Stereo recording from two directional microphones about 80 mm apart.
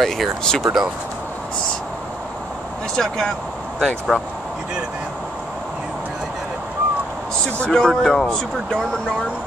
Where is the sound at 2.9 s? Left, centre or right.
Centre.